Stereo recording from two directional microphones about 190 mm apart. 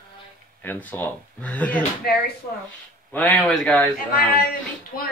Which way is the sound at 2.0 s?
55° left (ahead or behind).